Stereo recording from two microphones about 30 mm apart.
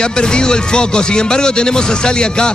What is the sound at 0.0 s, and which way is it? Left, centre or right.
Speech, left.